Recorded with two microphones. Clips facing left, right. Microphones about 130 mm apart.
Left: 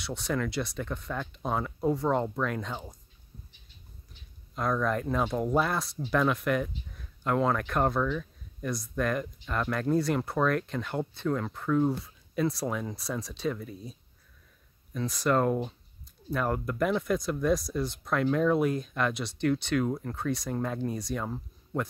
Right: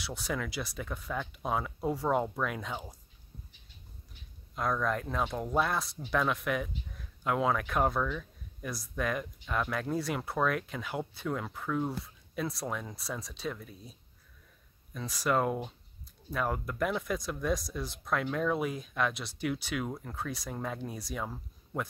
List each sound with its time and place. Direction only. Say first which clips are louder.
0.0 s speech: left 4 dB; 5° right (ahead or behind)
4.6 s speech: left 3 dB; centre (ahead or behind)
15.0 s speech: left 3 dB; centre (ahead or behind)